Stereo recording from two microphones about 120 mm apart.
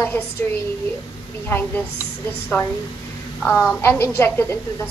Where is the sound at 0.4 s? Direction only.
15° left (ahead or behind).